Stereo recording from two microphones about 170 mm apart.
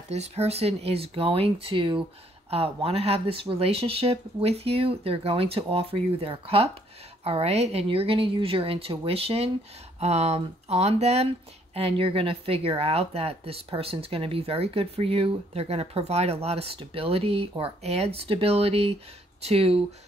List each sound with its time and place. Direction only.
0.1 s speech: 40° right (ahead or behind)